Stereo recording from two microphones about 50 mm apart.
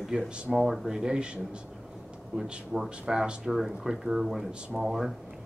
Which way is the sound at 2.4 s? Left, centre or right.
Centre.